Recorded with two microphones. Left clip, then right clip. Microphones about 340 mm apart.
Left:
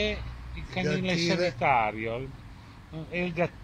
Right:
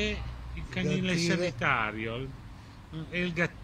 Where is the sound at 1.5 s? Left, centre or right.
Centre.